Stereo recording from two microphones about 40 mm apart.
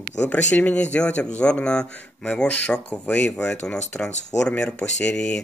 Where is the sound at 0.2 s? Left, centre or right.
Left.